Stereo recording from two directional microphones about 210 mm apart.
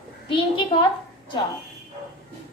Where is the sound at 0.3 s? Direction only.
25° left (ahead or behind).